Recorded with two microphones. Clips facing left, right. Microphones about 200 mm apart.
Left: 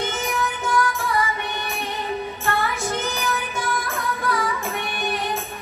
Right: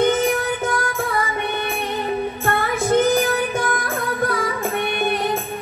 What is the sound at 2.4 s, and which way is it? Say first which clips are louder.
Music: right 2 dB; 55° right (ahead or behind).